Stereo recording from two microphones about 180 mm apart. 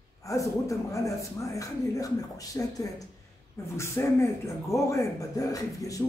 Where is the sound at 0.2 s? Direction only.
15° left (ahead or behind).